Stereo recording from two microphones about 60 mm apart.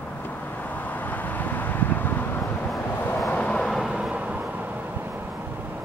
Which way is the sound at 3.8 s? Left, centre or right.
Centre.